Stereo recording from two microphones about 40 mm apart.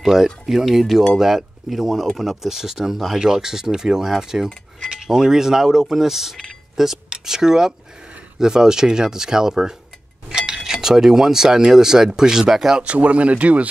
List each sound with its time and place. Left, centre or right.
0.0 s speech: centre
0.7 s speech: centre
12.8 s speech: right